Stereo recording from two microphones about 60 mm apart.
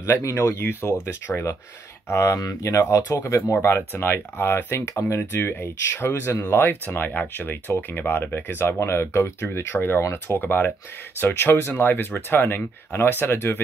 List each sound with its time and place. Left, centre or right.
0.0 s speech: left
2.3 s speech: left
3.6 s speech: left